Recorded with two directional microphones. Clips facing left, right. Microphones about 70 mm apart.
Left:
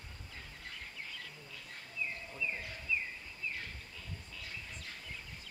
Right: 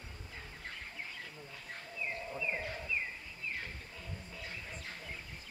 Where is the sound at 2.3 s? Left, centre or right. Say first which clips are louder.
Right 3 dB; right.